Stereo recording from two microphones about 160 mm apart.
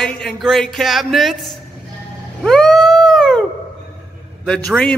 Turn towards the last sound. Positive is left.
turn(degrees=5)  # may be behind; listen again after turning